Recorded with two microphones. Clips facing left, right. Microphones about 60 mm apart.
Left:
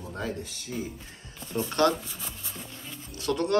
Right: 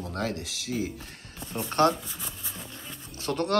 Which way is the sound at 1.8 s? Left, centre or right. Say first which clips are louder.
Right 1 dB; right.